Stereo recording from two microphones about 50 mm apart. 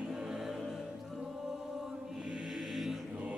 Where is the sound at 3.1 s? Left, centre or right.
Right.